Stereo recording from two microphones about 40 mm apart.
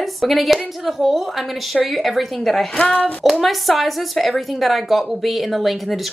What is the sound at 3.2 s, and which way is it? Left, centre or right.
A woman's voice, centre.